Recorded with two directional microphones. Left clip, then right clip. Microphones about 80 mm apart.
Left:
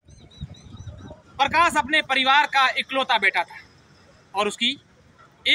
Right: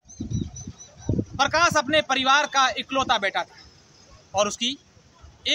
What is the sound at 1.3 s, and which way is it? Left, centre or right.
Speech, right.